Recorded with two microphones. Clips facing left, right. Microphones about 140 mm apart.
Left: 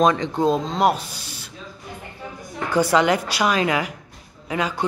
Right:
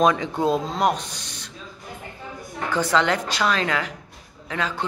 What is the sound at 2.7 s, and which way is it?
A man's voice, 10° left (ahead or behind).